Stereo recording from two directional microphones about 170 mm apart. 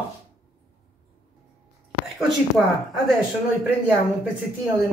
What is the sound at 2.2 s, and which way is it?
Speech, centre (ahead or behind).